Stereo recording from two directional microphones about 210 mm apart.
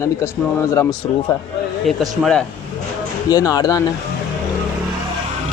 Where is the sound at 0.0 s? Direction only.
15° left (ahead or behind).